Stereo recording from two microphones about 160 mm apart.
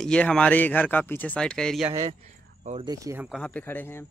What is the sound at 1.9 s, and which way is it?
Speech, 20° right (ahead or behind).